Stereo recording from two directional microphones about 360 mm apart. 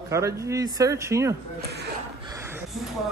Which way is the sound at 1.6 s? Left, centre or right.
Right.